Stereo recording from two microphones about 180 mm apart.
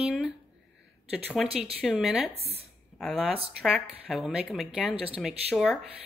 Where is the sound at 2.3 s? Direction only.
35° right (ahead or behind).